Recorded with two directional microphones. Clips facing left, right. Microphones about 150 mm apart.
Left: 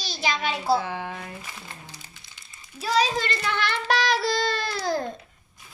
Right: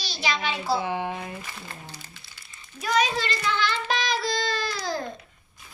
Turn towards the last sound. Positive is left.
turn(degrees=65)  # may be behind; listen again after turning